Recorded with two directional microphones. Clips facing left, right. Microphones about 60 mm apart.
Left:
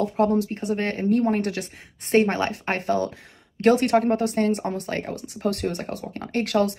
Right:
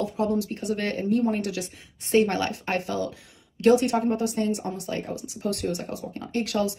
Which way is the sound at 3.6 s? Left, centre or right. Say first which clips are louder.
Left 2 dB; left.